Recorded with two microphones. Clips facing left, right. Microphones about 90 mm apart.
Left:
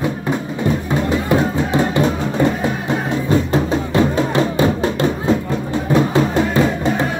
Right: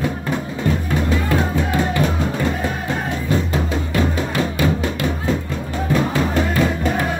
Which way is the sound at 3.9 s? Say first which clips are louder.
Left 5 dB; 30° left (ahead or behind).